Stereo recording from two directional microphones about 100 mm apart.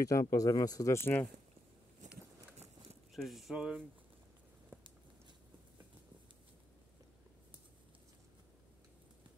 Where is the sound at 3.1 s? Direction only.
Centre (ahead or behind).